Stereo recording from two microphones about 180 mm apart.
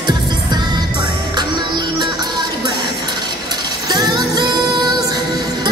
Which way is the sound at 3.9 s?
20° right (ahead or behind).